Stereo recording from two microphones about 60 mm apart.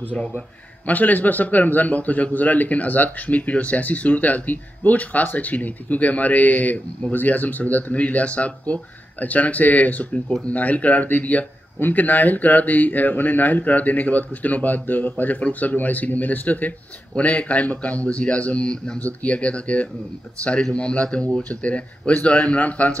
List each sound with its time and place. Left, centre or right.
0.8 s speech: left